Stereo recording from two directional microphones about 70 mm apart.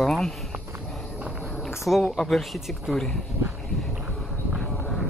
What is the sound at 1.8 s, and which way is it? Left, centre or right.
Speech, centre.